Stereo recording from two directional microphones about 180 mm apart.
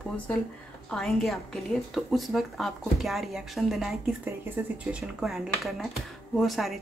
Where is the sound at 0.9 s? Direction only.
Centre (ahead or behind).